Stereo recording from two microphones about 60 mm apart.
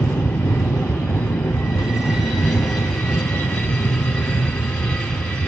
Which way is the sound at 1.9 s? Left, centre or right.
Centre.